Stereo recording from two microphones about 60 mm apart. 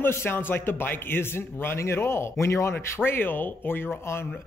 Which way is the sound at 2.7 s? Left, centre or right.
Left.